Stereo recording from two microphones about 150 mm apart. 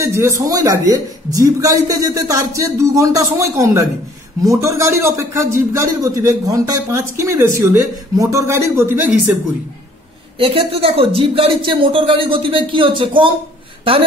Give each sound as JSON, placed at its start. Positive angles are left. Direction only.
{"t": 0.0, "sound": "a man's voice", "side_deg": -20}
{"t": 10.4, "sound": "speech", "side_deg": -40}